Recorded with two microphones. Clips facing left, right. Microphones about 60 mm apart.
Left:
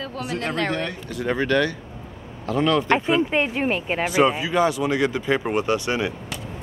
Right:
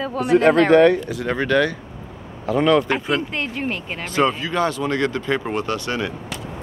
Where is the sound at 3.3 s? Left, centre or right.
Centre.